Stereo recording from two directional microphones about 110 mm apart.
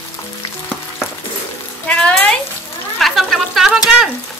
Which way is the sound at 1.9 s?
10° left (ahead or behind).